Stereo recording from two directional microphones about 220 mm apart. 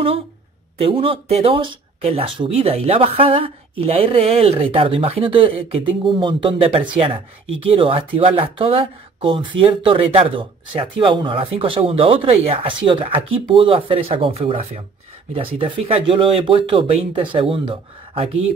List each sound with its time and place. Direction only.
0.7 s speech: 25° right (ahead or behind)